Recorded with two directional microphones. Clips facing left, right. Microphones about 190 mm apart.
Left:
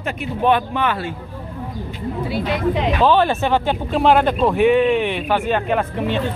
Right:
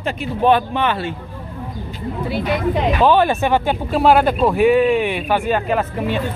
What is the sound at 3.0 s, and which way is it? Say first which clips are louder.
Speech: right 1 dB; 15° right (ahead or behind).